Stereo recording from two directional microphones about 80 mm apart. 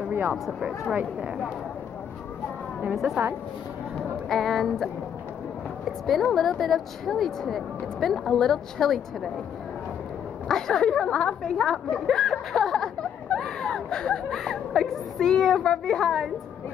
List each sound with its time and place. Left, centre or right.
0.1 s a sound: right
4.3 s a woman's voice: centre
10.5 s speech: centre